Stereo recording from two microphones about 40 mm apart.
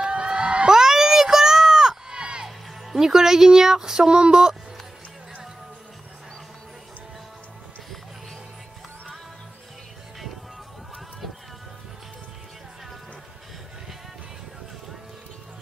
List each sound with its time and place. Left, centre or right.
0.0 s crowd: right
0.7 s a sound: centre
4.2 s speech: centre